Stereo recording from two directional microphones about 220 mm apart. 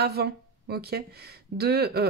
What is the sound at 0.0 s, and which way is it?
Speech, 45° right (ahead or behind).